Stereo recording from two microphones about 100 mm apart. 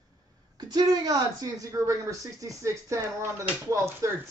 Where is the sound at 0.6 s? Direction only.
40° right (ahead or behind).